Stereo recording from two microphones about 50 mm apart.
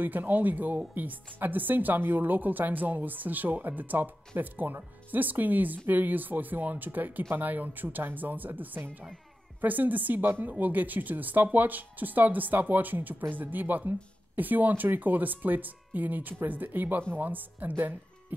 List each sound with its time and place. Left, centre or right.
0.0 s speech: right